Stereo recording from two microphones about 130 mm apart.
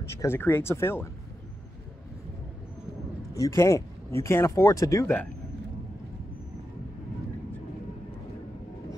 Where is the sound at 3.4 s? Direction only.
20° left (ahead or behind).